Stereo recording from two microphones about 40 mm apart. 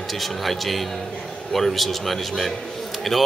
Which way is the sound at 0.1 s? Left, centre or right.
Centre.